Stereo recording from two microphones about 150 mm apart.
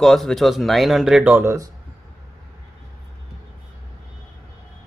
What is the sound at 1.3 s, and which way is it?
Speech, 20° right (ahead or behind).